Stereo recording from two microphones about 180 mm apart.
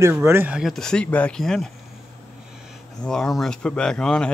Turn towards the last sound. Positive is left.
turn(degrees=5)  # may be behind; listen again after turning